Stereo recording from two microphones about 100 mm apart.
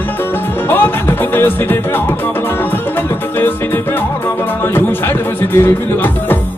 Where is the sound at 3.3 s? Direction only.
20° left (ahead or behind).